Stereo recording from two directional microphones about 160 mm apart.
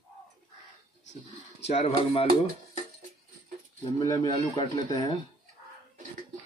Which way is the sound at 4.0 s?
25° left (ahead or behind).